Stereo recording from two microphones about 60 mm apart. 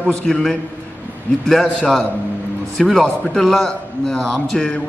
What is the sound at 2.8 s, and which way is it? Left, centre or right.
A man's voice, centre.